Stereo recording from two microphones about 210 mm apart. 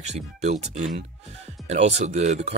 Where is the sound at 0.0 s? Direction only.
30° right (ahead or behind).